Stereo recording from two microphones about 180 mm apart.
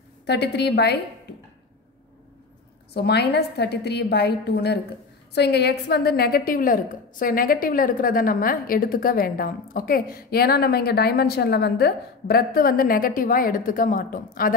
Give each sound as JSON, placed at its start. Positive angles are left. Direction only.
{"t": 0.3, "sound": "a woman's voice", "side_deg": 65}
{"t": 2.9, "sound": "a woman's voice", "side_deg": 65}